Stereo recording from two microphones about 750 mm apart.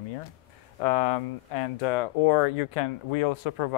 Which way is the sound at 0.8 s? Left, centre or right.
Left.